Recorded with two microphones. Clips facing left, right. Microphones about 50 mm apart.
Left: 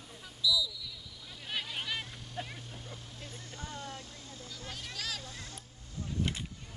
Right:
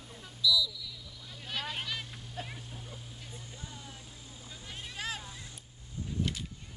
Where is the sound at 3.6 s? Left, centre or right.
Left.